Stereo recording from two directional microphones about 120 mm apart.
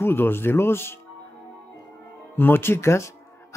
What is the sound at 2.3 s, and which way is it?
Speech, 20° left (ahead or behind).